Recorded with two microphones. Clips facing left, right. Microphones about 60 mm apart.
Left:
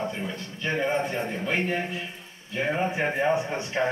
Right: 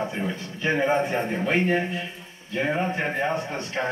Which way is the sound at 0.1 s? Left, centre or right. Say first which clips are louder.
Right 3 dB; centre.